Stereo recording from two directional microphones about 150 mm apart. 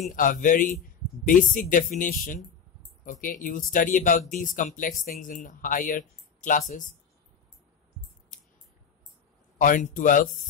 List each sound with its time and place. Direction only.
0.0 s speech: 60° left (ahead or behind)
9.6 s speech: 60° left (ahead or behind)